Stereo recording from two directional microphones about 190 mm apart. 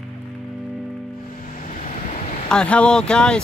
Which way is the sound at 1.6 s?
40° left (ahead or behind).